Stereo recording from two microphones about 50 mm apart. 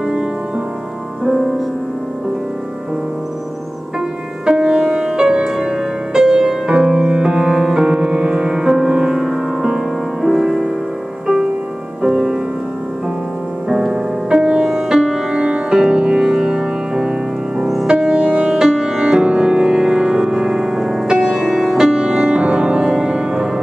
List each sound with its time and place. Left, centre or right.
0.0 s music: centre
1.2 s music: centre
4.5 s music: centre
12.0 s music: centre
13.7 s music: centre
14.7 s music: centre